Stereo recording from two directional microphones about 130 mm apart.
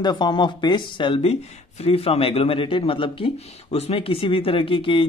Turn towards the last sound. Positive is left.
turn(degrees=40)  # may be behind; listen again after turning